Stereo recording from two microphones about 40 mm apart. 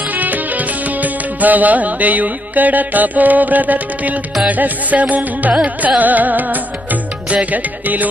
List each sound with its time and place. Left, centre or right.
0.1 s music: right